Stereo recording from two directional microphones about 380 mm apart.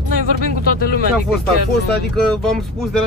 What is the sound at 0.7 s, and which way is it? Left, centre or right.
Speech, left.